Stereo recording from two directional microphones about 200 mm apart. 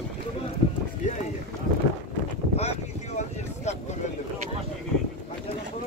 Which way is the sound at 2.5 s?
35° left (ahead or behind).